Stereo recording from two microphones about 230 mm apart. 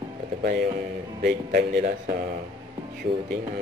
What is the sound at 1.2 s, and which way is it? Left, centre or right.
Speech, right.